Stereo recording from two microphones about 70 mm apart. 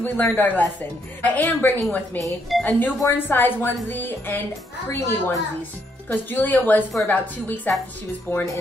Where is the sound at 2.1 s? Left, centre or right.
Centre.